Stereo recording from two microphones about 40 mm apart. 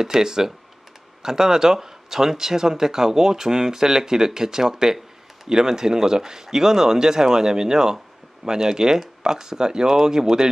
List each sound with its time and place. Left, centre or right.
0.0 s speech: centre